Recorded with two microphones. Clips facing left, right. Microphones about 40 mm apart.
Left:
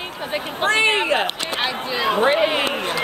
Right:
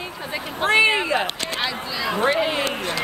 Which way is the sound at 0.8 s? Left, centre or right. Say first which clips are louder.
Left 1 dB; left.